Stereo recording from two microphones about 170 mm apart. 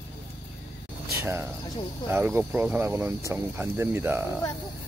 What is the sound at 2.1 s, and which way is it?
Speech, 10° right (ahead or behind).